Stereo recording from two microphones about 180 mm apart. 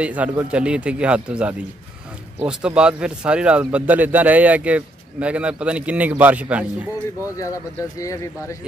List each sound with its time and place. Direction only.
0.0 s speech: 10° right (ahead or behind)
7.3 s speech: 15° left (ahead or behind)